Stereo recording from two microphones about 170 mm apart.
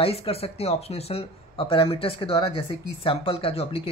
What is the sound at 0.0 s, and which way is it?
Speech, 35° left (ahead or behind).